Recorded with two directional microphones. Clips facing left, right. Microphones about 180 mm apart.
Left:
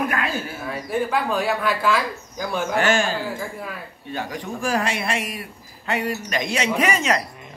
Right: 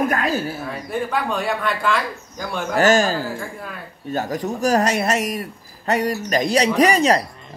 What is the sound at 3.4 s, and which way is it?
Speech, 5° left (ahead or behind).